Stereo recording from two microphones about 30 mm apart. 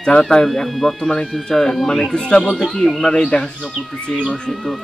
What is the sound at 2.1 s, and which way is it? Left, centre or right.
Speech, left.